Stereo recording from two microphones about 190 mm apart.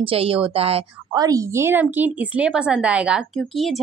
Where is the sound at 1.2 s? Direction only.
20° right (ahead or behind).